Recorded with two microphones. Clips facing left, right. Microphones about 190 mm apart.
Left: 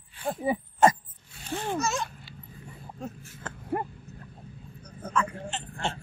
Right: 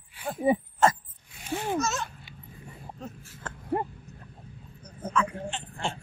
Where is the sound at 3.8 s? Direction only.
25° right (ahead or behind).